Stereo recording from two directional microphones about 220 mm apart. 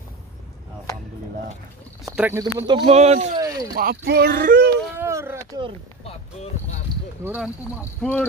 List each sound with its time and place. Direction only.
2.0 s speech: 10° right (ahead or behind); by 3.3 s 30° right (ahead or behind)
3.3 s a sound: 15° right (ahead or behind)
3.7 s speech: 45° right (ahead or behind)
4.9 s a sound: 10° right (ahead or behind)
6.0 s speech: 30° left (ahead or behind)
7.2 s speech: 5° right (ahead or behind)
8.0 s speech: 5° left (ahead or behind)